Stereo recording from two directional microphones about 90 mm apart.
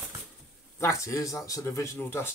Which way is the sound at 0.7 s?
30° left (ahead or behind).